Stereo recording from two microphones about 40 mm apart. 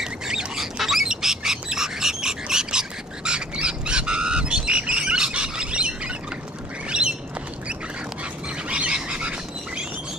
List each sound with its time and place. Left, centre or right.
0.0 s a sound: centre
0.7 s bird: centre; by 5.9 s right
6.9 s squawk: right
8.6 s bird: right